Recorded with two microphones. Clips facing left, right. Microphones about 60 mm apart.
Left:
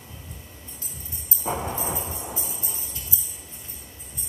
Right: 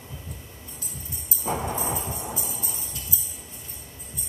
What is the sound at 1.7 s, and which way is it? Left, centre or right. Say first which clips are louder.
Music: right 1 dB; right.